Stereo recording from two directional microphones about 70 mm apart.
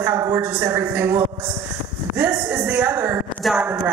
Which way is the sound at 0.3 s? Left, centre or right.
Right.